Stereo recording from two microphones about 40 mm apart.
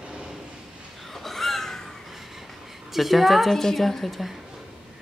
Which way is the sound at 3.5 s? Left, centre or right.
Centre.